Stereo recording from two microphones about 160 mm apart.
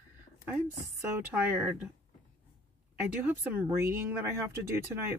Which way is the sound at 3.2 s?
15° right (ahead or behind).